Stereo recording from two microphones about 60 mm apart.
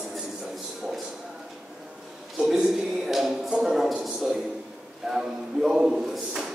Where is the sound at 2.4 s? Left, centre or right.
Centre.